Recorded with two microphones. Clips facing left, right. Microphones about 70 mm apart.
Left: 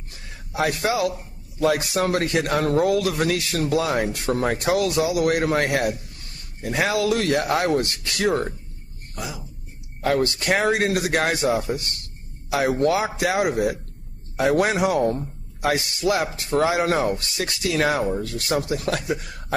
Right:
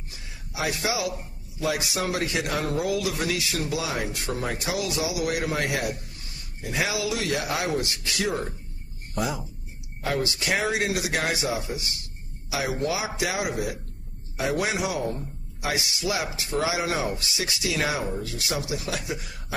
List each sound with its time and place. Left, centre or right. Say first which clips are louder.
0.1 s a sound: left 7 dB; left
1.6 s speech: left 6 dB; left
10.0 s speech: left 6 dB; left